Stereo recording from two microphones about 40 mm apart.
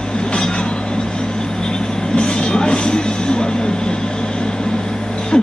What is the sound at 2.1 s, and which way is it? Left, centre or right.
Music, left.